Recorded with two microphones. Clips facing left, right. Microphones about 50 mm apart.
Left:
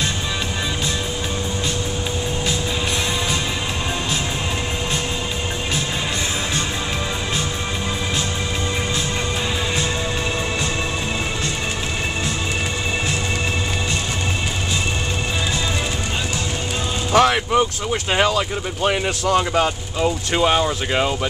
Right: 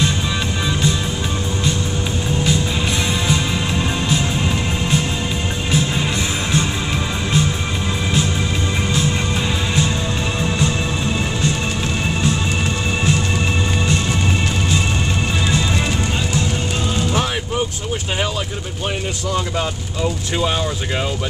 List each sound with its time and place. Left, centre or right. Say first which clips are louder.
17.1 s music: left 6 dB; left
18.9 s speech: left 4 dB; left
20.0 s speech: left 2 dB; left